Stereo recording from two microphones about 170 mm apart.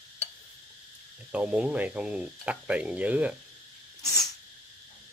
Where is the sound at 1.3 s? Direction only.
5° right (ahead or behind).